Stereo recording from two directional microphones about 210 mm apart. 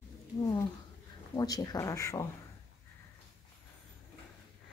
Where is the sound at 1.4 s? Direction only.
15° left (ahead or behind).